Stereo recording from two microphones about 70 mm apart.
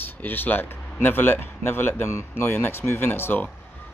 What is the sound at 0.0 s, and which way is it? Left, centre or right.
Speech, left.